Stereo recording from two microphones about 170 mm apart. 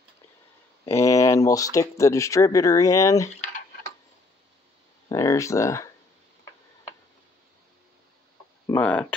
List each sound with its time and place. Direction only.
0.8 s speech: 15° left (ahead or behind)
5.1 s speech: 20° left (ahead or behind)
8.7 s speech: 10° left (ahead or behind)